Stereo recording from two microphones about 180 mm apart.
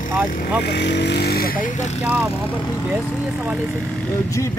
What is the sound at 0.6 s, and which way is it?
Speech, 70° left (ahead or behind).